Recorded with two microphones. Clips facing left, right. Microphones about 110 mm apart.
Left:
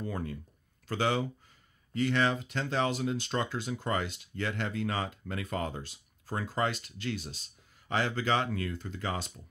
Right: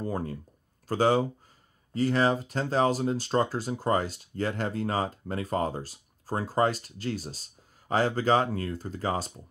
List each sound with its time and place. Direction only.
0.0 s speech: 35° right (ahead or behind)